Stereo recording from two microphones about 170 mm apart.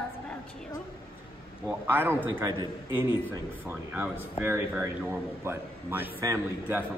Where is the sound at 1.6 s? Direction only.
10° right (ahead or behind).